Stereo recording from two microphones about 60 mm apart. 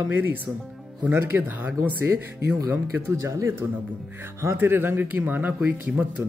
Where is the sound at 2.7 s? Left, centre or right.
Right.